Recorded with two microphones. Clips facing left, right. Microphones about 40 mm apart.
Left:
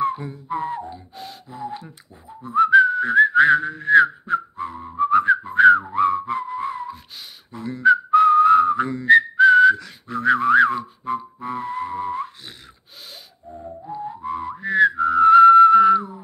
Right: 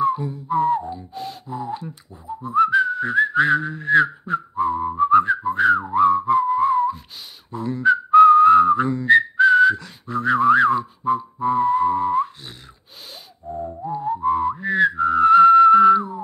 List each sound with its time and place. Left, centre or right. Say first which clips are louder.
0.0 s music: right 3 dB; centre
0.6 s speech: right 9 dB; centre
2.8 s whistling: left 4 dB; centre
13.5 s music: right 6 dB; right
13.9 s whistling: right 8 dB; centre